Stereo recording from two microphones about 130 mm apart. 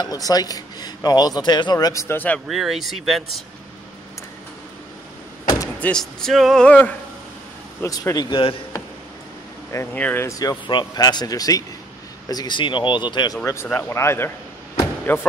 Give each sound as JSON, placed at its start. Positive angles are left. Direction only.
{"t": 0.0, "sound": "a man's voice", "side_deg": 30}
{"t": 2.4, "sound": "speech", "side_deg": 0}
{"t": 5.8, "sound": "speech", "side_deg": 5}
{"t": 7.8, "sound": "speech", "side_deg": 25}
{"t": 8.3, "sound": "speech", "side_deg": 45}
{"t": 9.9, "sound": "speech", "side_deg": 10}
{"t": 10.2, "sound": "a man's voice", "side_deg": 30}
{"t": 13.4, "sound": "speech", "side_deg": 20}